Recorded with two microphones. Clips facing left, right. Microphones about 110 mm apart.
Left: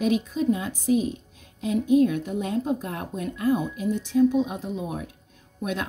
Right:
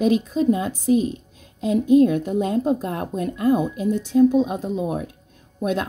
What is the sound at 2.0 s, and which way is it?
A woman's voice, 40° right (ahead or behind).